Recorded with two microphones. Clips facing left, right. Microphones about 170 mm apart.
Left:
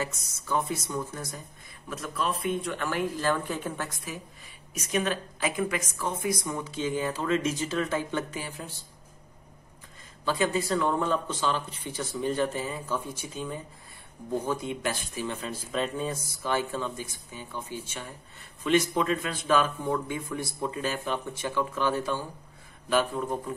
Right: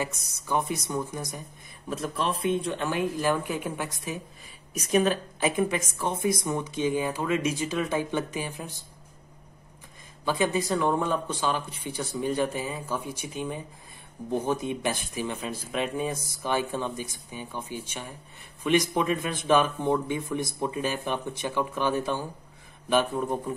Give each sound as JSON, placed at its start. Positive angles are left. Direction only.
{"t": 0.5, "sound": "speech", "side_deg": -15}
{"t": 1.9, "sound": "speech", "side_deg": -30}
{"t": 10.4, "sound": "speech", "side_deg": -15}